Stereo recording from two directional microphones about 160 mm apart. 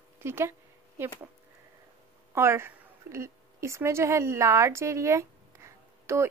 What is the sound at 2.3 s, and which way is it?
A woman's voice, 15° right (ahead or behind).